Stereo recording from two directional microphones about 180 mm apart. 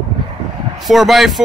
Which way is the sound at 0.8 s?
Centre (ahead or behind).